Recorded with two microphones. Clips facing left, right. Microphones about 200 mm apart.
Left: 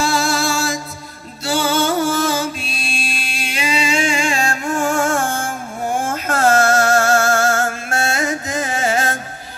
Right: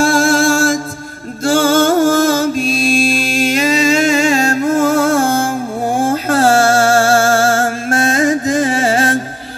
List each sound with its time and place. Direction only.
0.0 s music: 50° right (ahead or behind)
5.9 s a sound: 35° right (ahead or behind)
8.3 s music: 35° right (ahead or behind)